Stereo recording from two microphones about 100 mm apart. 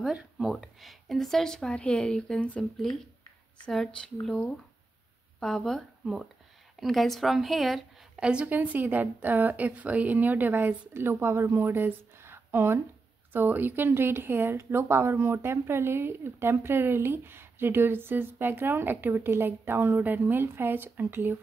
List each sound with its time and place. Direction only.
0.0 s a woman's voice: 5° right (ahead or behind); by 21.4 s 20° right (ahead or behind)